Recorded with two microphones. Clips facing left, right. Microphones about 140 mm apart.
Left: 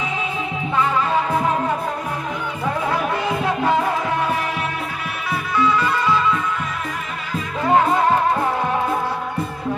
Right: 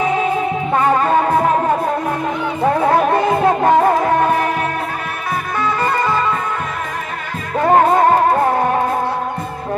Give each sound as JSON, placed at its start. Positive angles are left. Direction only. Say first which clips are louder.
{"t": 0.7, "sound": "music", "louder": "right 5 dB", "side_deg": -50}
{"t": 2.6, "sound": "music", "louder": "right 8 dB", "side_deg": -50}
{"t": 5.5, "sound": "music", "louder": "left 1 dB", "side_deg": -50}
{"t": 7.6, "sound": "music", "louder": "right 5 dB", "side_deg": -50}